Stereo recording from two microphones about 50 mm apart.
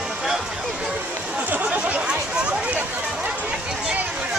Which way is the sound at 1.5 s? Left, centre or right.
Right.